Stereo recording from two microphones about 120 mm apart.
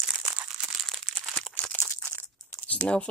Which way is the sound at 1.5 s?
15° left (ahead or behind).